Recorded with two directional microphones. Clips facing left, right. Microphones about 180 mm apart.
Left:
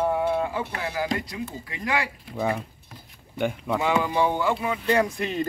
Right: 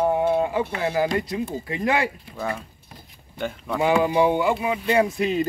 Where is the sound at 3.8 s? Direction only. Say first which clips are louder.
Right 5 dB; 20° right (ahead or behind).